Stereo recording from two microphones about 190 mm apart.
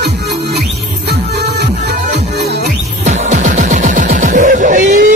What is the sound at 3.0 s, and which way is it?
Music, 40° right (ahead or behind).